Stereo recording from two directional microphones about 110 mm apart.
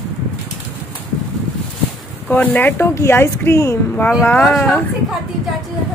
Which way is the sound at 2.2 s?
15° left (ahead or behind).